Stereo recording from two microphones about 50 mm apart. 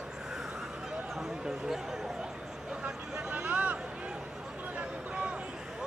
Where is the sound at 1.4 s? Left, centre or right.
Centre.